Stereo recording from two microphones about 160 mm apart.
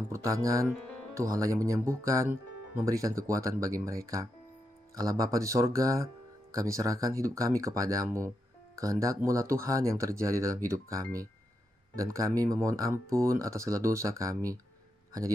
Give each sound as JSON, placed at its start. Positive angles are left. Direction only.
{"t": 0.1, "sound": "speech", "side_deg": -20}